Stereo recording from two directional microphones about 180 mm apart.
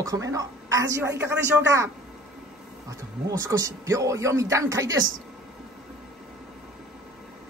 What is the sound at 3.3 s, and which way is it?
A woman's voice, 20° right (ahead or behind).